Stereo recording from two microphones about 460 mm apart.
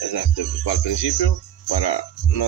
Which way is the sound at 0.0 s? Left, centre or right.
Left.